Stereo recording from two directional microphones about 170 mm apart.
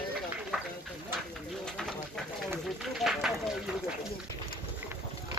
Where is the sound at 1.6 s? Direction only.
5° left (ahead or behind).